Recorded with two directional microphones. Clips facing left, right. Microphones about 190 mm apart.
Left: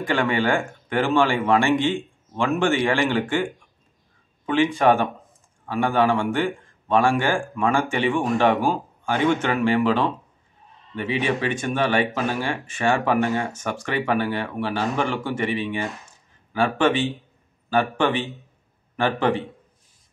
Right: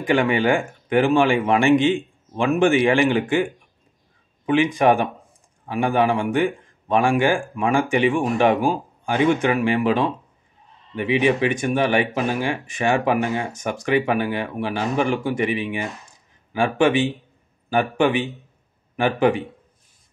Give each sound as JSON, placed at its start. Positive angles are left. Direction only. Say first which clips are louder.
{"t": 0.0, "sound": "speech", "louder": "right 3 dB", "side_deg": -15}
{"t": 4.5, "sound": "speech", "louder": "right 1 dB", "side_deg": -15}